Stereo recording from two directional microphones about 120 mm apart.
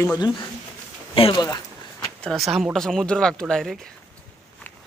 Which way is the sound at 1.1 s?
50° left (ahead or behind).